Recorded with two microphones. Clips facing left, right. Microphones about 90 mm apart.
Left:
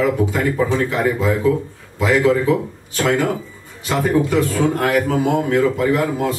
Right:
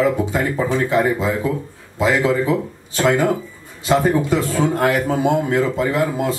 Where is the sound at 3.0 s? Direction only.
35° right (ahead or behind).